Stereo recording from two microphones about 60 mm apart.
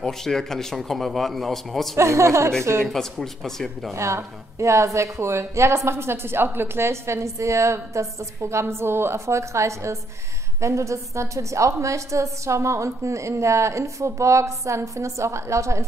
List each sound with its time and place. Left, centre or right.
0.0 s speech: centre
2.0 s a woman's voice: right
2.8 s a man's voice: centre
3.9 s a woman's voice: right